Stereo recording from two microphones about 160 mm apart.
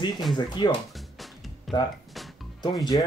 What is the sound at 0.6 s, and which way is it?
Speech, 30° left (ahead or behind).